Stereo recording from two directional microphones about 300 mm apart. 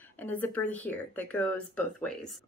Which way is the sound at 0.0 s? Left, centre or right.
Centre.